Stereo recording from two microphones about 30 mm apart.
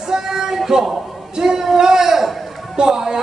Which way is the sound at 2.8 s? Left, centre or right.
Right.